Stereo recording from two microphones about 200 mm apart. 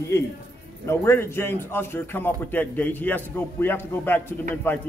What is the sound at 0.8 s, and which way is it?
A man's voice, 15° left (ahead or behind).